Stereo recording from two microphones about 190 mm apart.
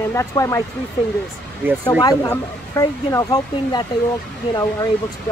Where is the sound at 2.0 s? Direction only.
20° left (ahead or behind).